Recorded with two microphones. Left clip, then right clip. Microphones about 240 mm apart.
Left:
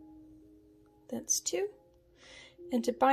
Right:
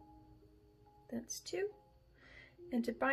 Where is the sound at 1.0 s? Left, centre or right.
Centre.